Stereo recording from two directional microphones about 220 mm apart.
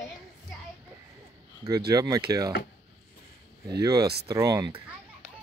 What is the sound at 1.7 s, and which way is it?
Speech, 15° right (ahead or behind).